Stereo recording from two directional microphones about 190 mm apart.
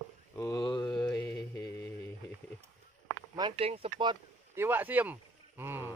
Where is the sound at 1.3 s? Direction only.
15° left (ahead or behind).